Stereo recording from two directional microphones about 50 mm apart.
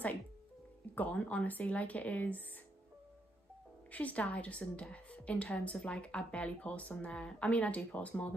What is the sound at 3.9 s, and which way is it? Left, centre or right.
Speech, left.